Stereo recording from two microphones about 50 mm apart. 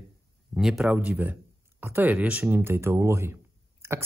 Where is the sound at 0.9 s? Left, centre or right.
Right.